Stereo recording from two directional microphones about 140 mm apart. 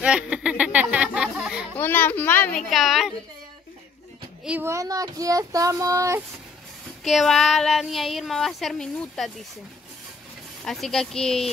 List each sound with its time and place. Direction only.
0.0 s a sound: 5° right (ahead or behind)
1.8 s a child's voice: 15° left (ahead or behind)
2.5 s a woman's voice: centre (ahead or behind)
4.5 s speech: 15° right (ahead or behind)
7.1 s a woman's voice: centre (ahead or behind)
10.6 s a woman's voice: 5° left (ahead or behind)